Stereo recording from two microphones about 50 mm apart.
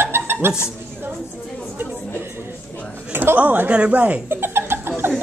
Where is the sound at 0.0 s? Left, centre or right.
Right.